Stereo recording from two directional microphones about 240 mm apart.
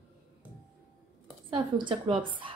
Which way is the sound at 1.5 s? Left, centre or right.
Centre.